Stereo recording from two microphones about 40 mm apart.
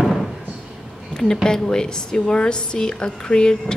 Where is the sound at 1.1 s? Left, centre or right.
Centre.